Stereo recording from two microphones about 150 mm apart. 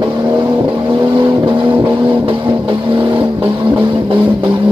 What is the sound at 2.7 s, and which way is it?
Vehicle, 30° right (ahead or behind).